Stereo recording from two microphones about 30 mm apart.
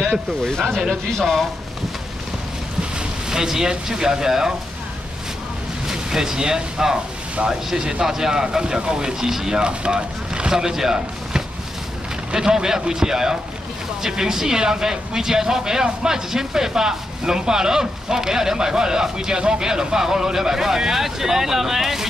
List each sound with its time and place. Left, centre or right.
0.4 s speech: centre
3.3 s speech: centre
5.9 s speech: centre
9.3 s speech: centre
9.6 s speech: right
10.5 s speech: centre